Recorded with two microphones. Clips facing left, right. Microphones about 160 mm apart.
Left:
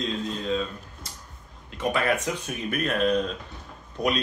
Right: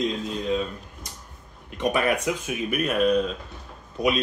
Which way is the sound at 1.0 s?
15° right (ahead or behind).